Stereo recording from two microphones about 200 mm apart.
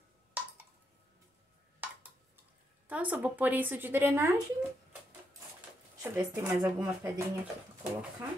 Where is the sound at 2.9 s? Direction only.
5° right (ahead or behind).